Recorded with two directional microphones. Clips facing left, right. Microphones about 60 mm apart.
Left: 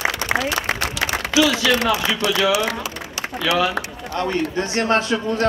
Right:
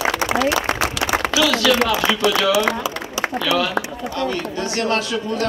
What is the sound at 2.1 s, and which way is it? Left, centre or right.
Speech, centre.